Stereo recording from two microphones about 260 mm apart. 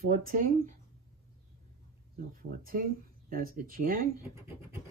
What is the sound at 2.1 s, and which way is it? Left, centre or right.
Speech, right.